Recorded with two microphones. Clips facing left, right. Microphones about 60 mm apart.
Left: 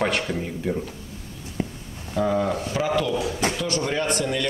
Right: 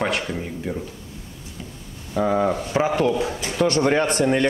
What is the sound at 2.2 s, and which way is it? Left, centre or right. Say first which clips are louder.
A man's voice: right 2 dB; right.